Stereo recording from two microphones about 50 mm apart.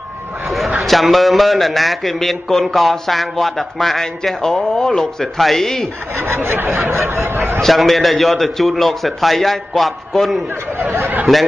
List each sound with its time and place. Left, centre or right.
0.8 s speech: centre
6.3 s a sound: right
7.6 s speech: centre
10.8 s chatter: right